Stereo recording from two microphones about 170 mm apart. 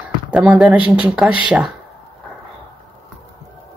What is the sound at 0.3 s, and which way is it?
Speech, 5° right (ahead or behind).